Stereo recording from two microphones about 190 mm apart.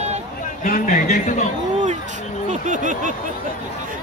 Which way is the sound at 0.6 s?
45° left (ahead or behind).